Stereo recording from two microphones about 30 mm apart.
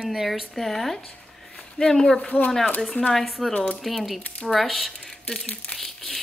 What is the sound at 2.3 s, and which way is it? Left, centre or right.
Speech, left.